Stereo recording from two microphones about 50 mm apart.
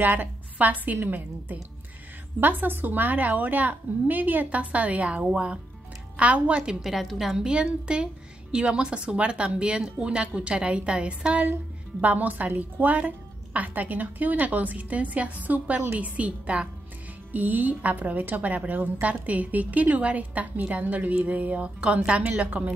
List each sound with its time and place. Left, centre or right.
0.0 s a woman's voice: right; by 6.8 s centre
6.8 s a woman's voice: centre
7.3 s a woman's voice: centre
12.0 s a woman's voice: right